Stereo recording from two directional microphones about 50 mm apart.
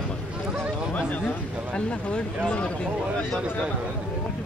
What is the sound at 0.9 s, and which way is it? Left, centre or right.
Speech, left.